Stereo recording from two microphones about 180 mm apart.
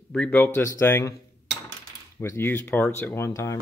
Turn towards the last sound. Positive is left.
turn(degrees=15)  # may be behind; listen again after turning